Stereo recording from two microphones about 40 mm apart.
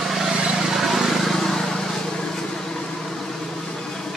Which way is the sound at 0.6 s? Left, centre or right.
Centre.